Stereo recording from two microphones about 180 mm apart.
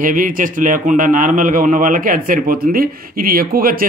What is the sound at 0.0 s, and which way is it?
A man's voice, 50° right (ahead or behind).